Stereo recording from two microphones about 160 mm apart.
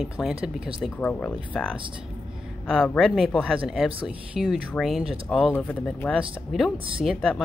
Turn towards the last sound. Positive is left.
turn(degrees=5)  # may be behind; listen again after turning